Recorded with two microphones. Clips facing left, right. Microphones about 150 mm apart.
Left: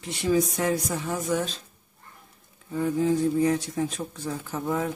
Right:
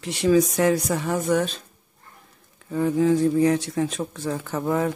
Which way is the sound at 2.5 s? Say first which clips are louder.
Right 4 dB; 75° right (ahead or behind).